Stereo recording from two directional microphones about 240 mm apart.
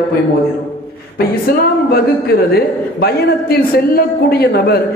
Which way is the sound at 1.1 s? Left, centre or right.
Left.